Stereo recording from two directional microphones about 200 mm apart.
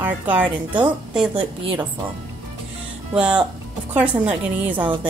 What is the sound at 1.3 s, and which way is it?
Speech, 25° right (ahead or behind).